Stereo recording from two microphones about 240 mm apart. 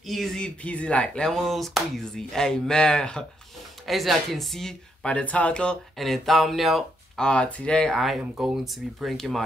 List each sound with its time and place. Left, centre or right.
0.0 s speech: centre